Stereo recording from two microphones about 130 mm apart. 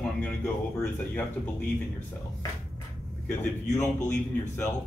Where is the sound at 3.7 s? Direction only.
20° left (ahead or behind).